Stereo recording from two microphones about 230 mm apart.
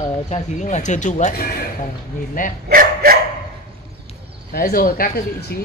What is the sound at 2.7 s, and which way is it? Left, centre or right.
Speech, right.